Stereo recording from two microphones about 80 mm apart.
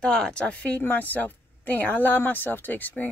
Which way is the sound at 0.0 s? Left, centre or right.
Centre.